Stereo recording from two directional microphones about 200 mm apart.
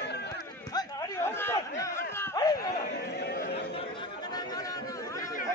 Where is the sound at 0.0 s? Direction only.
55° left (ahead or behind).